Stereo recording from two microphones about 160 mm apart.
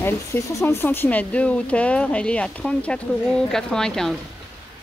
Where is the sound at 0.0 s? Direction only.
15° left (ahead or behind).